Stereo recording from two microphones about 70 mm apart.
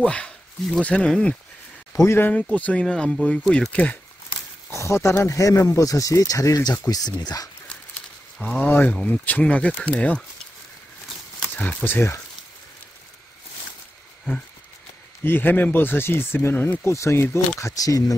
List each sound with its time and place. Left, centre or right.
0.0 s speech: centre
2.0 s speech: left
2.5 s speech: left
2.8 s speech: centre
3.7 s speech: left
4.6 s speech: left
6.9 s speech: left
8.4 s speech: centre
8.6 s speech: left
11.5 s speech: left
15.2 s speech: left
16.8 s speech: left